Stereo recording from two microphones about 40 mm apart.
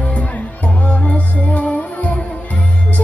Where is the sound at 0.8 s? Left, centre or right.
Left.